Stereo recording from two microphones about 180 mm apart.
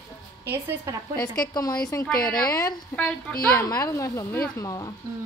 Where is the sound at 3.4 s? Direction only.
15° left (ahead or behind).